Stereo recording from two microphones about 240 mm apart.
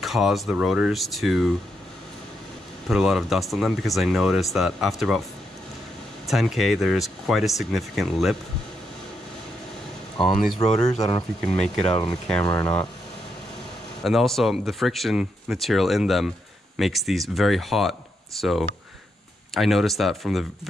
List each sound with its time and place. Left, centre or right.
0.0 s speech: centre
2.9 s speech: centre
6.2 s speech: centre
10.1 s speech: centre
10.8 s speech: centre
11.4 s speech: centre
14.0 s speech: centre